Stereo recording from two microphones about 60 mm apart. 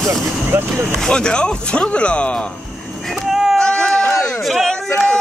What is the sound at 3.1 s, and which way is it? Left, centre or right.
Vehicle, centre.